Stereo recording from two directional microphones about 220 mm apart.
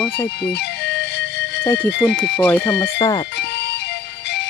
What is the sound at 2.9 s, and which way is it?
Speech, 20° left (ahead or behind).